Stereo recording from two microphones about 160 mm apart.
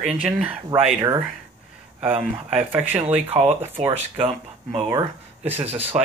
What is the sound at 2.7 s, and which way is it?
Speech, 10° right (ahead or behind).